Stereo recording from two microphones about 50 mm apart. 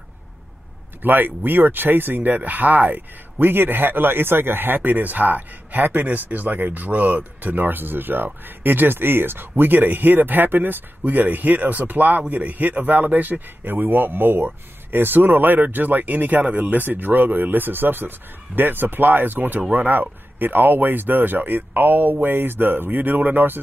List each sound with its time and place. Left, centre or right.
1.0 s speech: right